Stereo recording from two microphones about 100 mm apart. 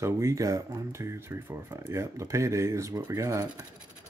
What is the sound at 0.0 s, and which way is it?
Speech, 30° right (ahead or behind).